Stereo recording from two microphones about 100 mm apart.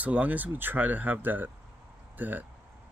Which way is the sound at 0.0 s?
15° right (ahead or behind).